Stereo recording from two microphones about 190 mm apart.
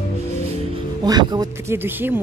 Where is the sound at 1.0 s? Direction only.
20° right (ahead or behind).